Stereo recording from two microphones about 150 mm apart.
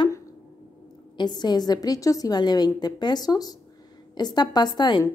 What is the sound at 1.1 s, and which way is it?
A woman's voice, 30° left (ahead or behind).